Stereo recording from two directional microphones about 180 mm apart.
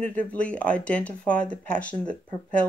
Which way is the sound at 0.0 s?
10° left (ahead or behind).